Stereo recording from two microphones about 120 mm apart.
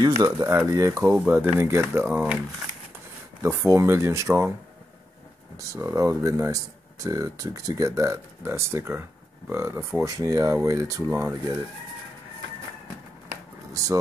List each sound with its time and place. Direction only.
0.0 s speech: 30° right (ahead or behind); by 2.3 s 15° right (ahead or behind)
3.4 s speech: 25° right (ahead or behind)
5.7 s speech: 25° right (ahead or behind)